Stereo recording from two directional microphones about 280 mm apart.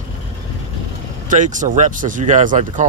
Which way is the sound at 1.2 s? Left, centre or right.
Right.